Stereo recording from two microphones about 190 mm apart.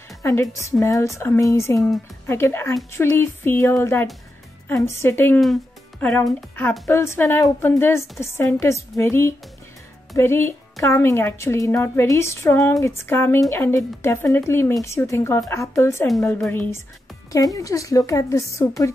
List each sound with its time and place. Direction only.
0.2 s speech: 15° left (ahead or behind)